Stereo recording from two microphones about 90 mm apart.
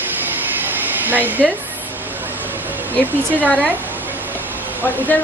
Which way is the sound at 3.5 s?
5° left (ahead or behind).